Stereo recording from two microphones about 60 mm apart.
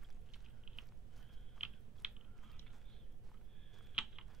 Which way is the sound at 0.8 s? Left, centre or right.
Centre.